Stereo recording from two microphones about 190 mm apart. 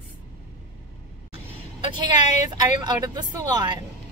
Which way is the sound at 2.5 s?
20° right (ahead or behind).